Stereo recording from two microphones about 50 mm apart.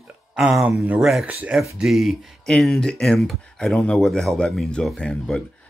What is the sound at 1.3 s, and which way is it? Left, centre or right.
Speech, right.